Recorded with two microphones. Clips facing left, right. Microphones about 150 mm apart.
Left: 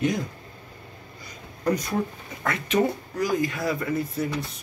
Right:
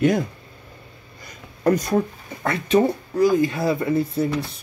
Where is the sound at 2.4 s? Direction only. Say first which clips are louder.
Right 5 dB; 30° right (ahead or behind).